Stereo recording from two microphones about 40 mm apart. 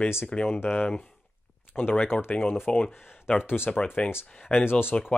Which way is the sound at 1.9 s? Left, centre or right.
Left.